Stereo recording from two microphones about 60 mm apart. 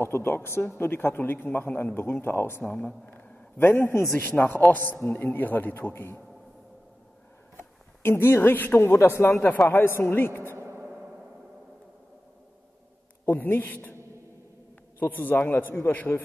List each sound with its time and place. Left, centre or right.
0.0 s a man's voice: left
2.6 s speech: left
3.1 s a sound: left
4.2 s a man's voice: left
7.5 s speech: left
9.3 s a man's voice: left
10.6 s a sound: right
13.2 s a man's voice: left
15.0 s a man's voice: left